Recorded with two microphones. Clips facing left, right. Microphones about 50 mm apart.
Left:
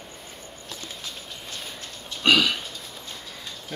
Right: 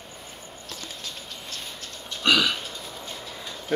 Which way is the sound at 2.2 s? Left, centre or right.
Centre.